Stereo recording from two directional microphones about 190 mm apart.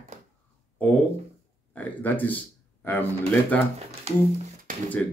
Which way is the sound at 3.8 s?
35° right (ahead or behind).